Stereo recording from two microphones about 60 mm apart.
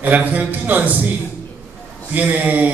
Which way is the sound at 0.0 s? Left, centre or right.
Right.